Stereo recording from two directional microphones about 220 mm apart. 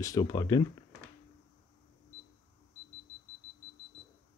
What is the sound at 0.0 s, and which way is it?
Speech, 15° left (ahead or behind).